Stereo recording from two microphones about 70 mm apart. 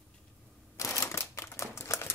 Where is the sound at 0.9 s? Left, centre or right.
Left.